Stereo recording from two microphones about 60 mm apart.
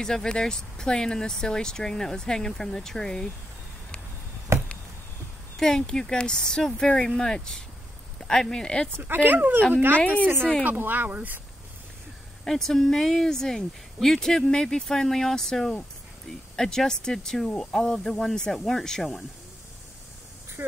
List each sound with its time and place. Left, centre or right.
0.0 s speech: centre
4.5 s chop: right
5.6 s speech: centre
9.0 s speech: right
9.9 s a woman's voice: left
10.6 s speech: right
12.4 s speech: centre